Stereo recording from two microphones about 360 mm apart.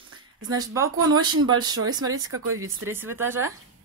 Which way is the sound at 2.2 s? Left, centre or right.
Right.